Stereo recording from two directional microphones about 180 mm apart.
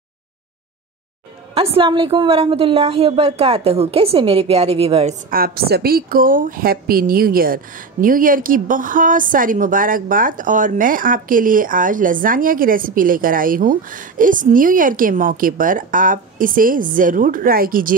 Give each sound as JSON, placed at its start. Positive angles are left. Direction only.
{"t": 1.5, "sound": "a woman's voice", "side_deg": -30}
{"t": 5.3, "sound": "a woman's voice", "side_deg": -55}